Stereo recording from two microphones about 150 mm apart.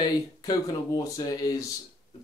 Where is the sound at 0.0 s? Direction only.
25° left (ahead or behind).